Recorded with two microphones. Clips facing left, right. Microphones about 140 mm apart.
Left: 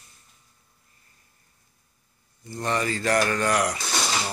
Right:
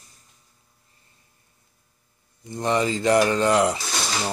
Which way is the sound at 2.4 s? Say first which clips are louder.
Right 4 dB; 20° right (ahead or behind).